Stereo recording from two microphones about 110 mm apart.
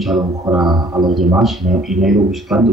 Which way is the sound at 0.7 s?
40° right (ahead or behind).